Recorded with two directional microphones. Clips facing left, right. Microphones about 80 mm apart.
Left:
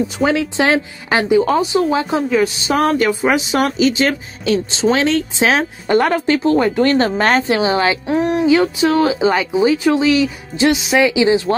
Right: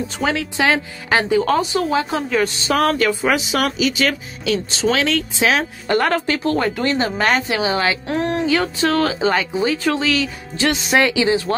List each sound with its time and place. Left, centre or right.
0.3 s speech: left
6.8 s a woman's voice: left
8.1 s speech: centre
10.7 s speech: centre
11.1 s speech: left